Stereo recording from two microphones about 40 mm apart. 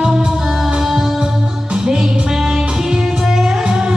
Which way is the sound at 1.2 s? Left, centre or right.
Centre.